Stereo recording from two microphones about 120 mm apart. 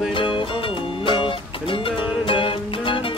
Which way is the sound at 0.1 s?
45° left (ahead or behind).